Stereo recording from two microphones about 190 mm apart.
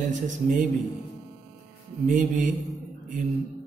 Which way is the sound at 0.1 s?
40° right (ahead or behind).